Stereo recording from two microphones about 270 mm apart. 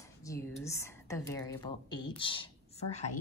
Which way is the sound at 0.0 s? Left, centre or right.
Centre.